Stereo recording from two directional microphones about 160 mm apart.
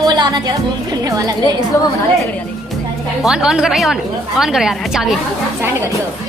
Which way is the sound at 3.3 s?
5° right (ahead or behind).